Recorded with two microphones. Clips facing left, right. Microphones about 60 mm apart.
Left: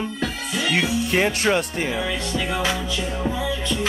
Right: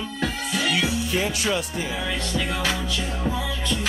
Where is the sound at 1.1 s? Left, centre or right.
Left.